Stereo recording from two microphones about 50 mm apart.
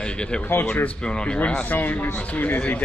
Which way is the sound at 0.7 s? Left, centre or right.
Left.